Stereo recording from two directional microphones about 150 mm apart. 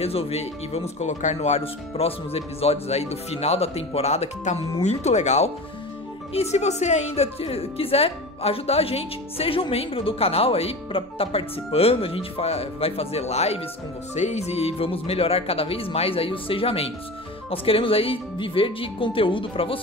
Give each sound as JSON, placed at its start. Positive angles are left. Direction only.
{"t": 0.0, "sound": "a woman's voice", "side_deg": 40}